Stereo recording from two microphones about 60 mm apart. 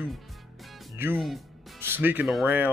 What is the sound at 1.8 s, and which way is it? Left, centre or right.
Speech, right.